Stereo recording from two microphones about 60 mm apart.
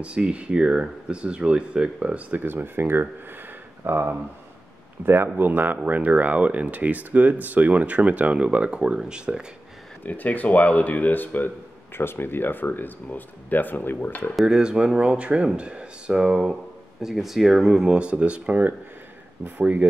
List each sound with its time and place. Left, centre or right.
0.0 s speech: centre
2.4 s speech: right; by 9.4 s centre
10.0 s speech: left
14.4 s speech: centre
17.8 s speech: centre